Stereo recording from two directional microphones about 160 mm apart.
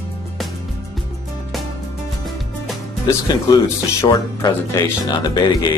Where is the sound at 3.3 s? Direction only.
25° left (ahead or behind).